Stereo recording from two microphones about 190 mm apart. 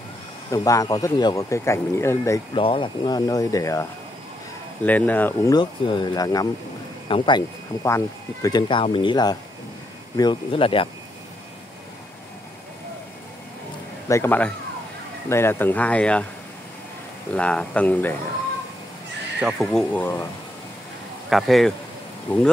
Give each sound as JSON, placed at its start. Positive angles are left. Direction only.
{"t": 0.5, "sound": "speech", "side_deg": 20}
{"t": 2.5, "sound": "speech", "side_deg": 30}
{"t": 4.8, "sound": "speech", "side_deg": 10}
{"t": 5.5, "sound": "speech", "side_deg": 25}
{"t": 14.0, "sound": "speech", "side_deg": 15}
{"t": 17.3, "sound": "speech", "side_deg": 5}
{"t": 19.4, "sound": "speech", "side_deg": 0}
{"t": 21.3, "sound": "speech", "side_deg": 0}